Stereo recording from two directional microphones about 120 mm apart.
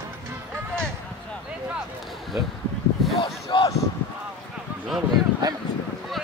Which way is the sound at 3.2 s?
40° left (ahead or behind).